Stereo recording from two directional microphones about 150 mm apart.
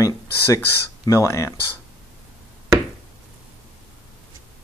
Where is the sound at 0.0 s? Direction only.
20° left (ahead or behind).